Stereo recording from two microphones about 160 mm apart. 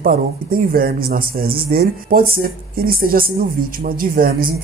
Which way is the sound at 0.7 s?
65° right (ahead or behind).